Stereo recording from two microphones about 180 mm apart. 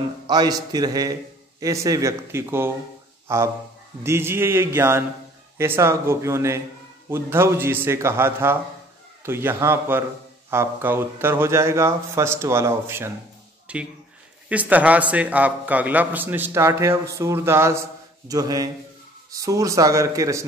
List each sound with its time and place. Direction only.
0.3 s a man's voice: 20° right (ahead or behind)